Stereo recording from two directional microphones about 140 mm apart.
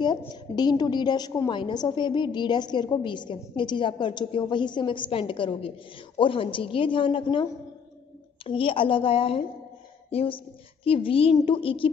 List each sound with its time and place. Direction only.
0.3 s a woman's voice: 30° left (ahead or behind)
8.5 s a woman's voice: 40° left (ahead or behind)